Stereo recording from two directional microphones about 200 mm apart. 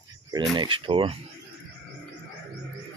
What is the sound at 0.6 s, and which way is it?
Speech, 25° right (ahead or behind).